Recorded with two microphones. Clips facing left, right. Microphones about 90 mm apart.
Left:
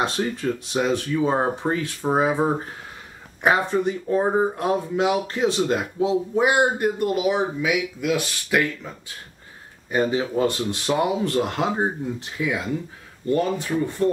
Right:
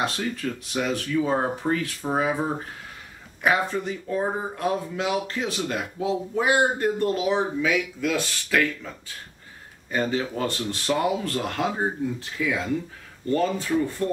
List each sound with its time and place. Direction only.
0.0 s speech: 25° left (ahead or behind)